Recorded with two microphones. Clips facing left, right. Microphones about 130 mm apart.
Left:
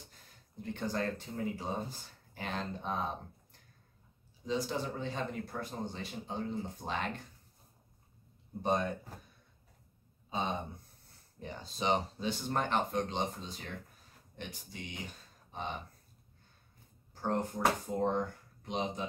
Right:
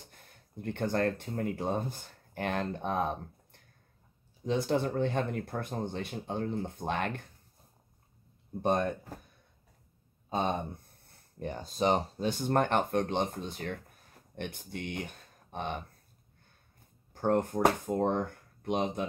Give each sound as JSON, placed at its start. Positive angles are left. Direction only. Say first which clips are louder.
{"t": 0.0, "sound": "speech", "louder": "right 2 dB", "side_deg": -60}
{"t": 8.6, "sound": "speech", "louder": "right 3 dB", "side_deg": -55}
{"t": 10.3, "sound": "speech", "louder": "right 5 dB", "side_deg": -55}
{"t": 17.1, "sound": "speech", "louder": "right 6 dB", "side_deg": -55}